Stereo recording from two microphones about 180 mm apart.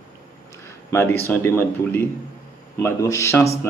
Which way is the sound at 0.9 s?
15° left (ahead or behind).